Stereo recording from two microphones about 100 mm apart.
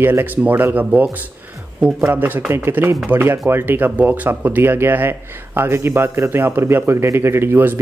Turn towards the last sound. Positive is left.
turn(degrees=-20)  # may be behind; listen again after turning